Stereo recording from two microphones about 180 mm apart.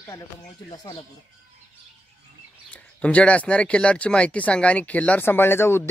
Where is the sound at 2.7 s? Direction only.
5° left (ahead or behind).